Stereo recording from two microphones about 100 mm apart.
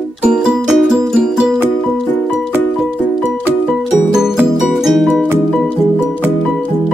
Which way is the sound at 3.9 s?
5° right (ahead or behind).